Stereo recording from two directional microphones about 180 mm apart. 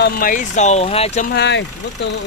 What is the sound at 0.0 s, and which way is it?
Speech, 50° left (ahead or behind).